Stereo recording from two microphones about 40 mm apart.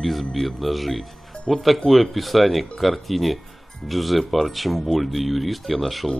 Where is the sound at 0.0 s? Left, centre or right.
Centre.